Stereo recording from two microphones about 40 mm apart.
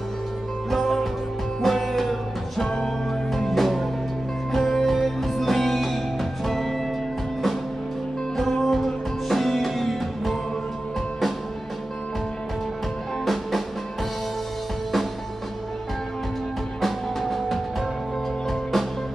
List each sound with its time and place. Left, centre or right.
0.7 s music: centre
8.4 s music: centre
13.2 s music: centre
16.8 s music: centre